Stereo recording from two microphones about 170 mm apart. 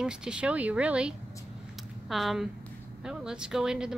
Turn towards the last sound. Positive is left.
turn(degrees=-5)  # may be behind; listen again after turning